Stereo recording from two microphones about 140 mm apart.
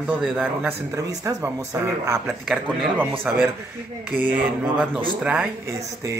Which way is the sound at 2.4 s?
5° right (ahead or behind).